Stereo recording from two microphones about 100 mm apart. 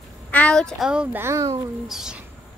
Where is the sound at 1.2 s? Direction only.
30° right (ahead or behind).